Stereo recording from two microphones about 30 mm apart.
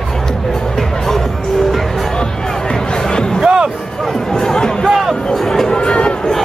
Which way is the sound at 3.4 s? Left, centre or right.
Right.